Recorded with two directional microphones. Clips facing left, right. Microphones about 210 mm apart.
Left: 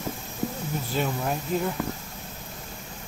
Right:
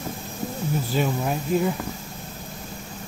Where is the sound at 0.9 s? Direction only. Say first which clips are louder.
Right 2 dB; 5° right (ahead or behind).